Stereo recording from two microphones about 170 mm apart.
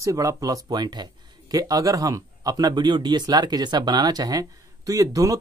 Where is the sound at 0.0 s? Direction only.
20° right (ahead or behind).